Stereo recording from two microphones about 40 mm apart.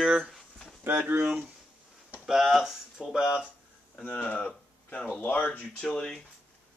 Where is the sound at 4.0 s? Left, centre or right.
Left.